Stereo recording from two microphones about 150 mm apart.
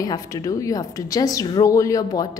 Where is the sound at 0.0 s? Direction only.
25° left (ahead or behind).